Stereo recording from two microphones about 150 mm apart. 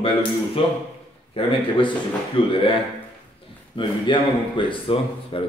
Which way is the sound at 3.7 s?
35° left (ahead or behind).